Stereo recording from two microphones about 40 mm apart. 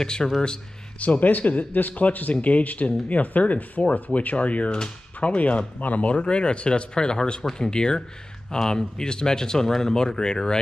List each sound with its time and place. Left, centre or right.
0.0 s speech: centre
0.9 s speech: left
1.7 s speech: left
4.6 s speech: centre
5.2 s speech: left
6.1 s speech: left